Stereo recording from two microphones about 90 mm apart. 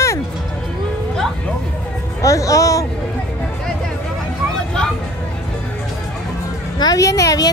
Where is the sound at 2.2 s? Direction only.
35° left (ahead or behind).